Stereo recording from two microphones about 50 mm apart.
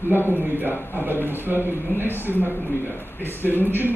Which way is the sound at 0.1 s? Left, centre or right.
Right.